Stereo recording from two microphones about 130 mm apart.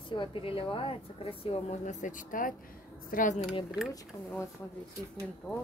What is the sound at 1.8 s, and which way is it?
Speech, 70° left (ahead or behind).